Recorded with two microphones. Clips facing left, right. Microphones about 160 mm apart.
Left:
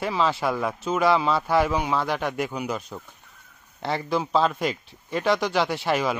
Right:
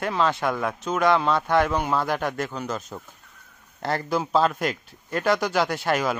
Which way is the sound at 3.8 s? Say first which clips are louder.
Even; centre (ahead or behind).